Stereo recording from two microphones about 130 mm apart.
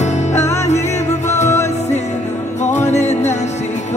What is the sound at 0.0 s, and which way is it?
Music, 60° left (ahead or behind).